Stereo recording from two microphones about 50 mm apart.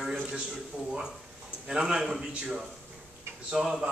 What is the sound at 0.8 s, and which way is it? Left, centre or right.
A man's voice, centre.